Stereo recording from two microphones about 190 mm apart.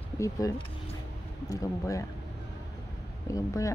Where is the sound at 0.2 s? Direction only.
15° left (ahead or behind).